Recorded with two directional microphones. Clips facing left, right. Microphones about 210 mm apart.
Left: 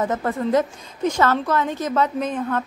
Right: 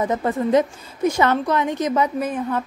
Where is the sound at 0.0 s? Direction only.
15° right (ahead or behind).